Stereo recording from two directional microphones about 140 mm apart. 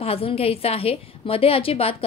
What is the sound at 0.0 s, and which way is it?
A woman's voice, 40° left (ahead or behind).